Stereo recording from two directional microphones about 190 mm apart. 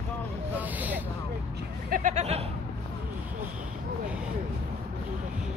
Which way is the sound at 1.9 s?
45° right (ahead or behind).